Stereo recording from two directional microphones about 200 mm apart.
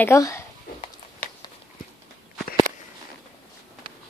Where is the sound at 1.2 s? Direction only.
5° left (ahead or behind).